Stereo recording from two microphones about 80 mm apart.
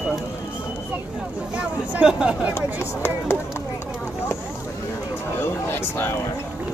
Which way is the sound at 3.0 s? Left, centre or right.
Left.